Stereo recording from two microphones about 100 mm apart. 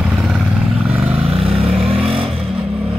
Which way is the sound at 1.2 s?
70° right (ahead or behind).